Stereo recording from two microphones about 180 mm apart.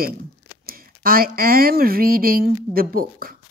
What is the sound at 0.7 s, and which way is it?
Speech, 55° right (ahead or behind).